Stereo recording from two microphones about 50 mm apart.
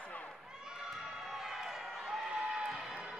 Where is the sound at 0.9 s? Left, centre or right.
Centre.